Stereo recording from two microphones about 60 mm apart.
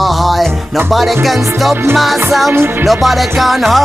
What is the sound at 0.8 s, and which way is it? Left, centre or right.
Speech, centre.